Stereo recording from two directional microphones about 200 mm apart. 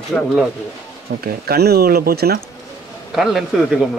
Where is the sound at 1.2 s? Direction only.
50° right (ahead or behind).